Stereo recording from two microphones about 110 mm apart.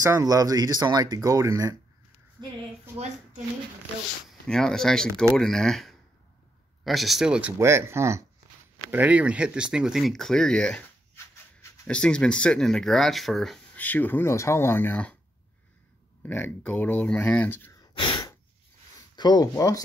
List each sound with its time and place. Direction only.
0.0 s speech: 30° right (ahead or behind)
2.4 s speech: 40° right (ahead or behind)
4.3 s speech: 5° left (ahead or behind)
7.5 s speech: 25° right (ahead or behind)
8.9 s speech: 10° right (ahead or behind); by 10.9 s 10° left (ahead or behind)
11.9 s speech: 10° left (ahead or behind)
13.7 s speech: 15° left (ahead or behind)
16.3 s speech: 15° left (ahead or behind)
17.9 s sigh: 45° left (ahead or behind)
19.1 s speech: 40° left (ahead or behind)